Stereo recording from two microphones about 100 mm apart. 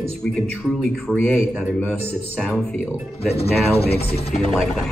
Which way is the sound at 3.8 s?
80° left.